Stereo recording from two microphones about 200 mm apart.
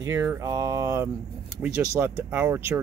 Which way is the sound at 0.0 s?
10° right (ahead or behind).